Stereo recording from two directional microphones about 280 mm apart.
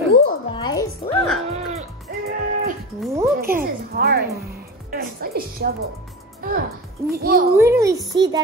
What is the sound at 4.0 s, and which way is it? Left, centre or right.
Music, right.